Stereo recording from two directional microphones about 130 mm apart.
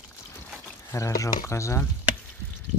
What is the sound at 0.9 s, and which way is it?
Speech, 25° left (ahead or behind).